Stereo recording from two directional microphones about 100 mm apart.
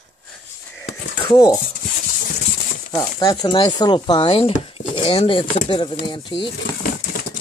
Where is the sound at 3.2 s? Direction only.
35° left (ahead or behind).